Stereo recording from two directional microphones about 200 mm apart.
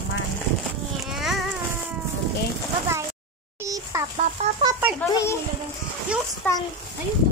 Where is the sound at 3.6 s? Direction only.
15° right (ahead or behind).